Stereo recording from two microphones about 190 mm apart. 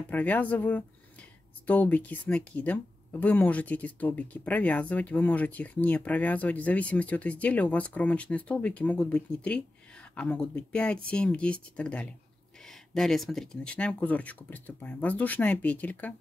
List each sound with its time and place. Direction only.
0.1 s speech: 10° left (ahead or behind)